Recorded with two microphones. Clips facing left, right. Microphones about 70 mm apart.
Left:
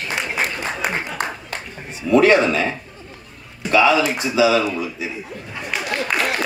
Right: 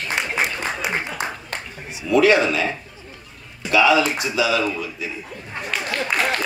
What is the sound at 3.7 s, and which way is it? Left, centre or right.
Speech, left.